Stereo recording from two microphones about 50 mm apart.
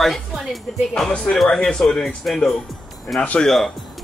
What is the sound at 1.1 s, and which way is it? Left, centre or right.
A man's voice, left.